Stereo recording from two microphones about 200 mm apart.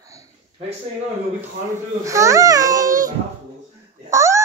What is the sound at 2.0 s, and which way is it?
Speech, 15° right (ahead or behind).